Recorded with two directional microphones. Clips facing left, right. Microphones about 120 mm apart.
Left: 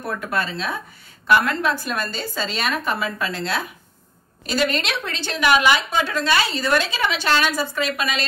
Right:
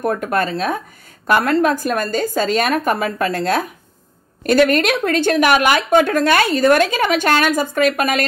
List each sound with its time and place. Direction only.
0.0 s speech: 45° right (ahead or behind)